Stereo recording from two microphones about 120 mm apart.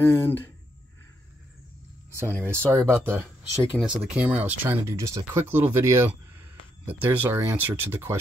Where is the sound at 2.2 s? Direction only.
15° left (ahead or behind).